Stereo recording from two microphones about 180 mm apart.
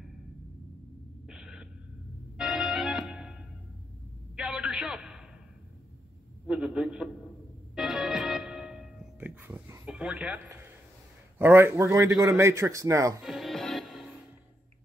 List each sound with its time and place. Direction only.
1.2 s a sound: 5° right (ahead or behind)
2.3 s music: centre (ahead or behind)
4.4 s a sound: 5° right (ahead or behind)
6.4 s a man's voice: 5° right (ahead or behind)
7.7 s music: centre (ahead or behind)
11.3 s a man's voice: 10° right (ahead or behind)
13.2 s music: centre (ahead or behind)